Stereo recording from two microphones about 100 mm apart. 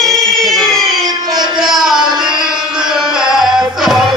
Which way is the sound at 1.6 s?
Centre (ahead or behind).